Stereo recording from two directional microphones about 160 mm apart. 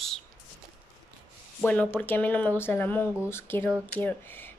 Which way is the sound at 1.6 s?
10° left (ahead or behind).